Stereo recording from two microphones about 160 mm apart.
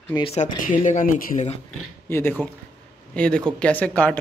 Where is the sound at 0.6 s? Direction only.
55° left (ahead or behind).